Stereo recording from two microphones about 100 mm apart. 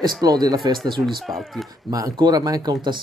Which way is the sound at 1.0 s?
Centre (ahead or behind).